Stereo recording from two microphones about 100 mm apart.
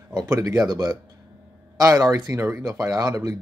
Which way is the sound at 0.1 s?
30° right (ahead or behind).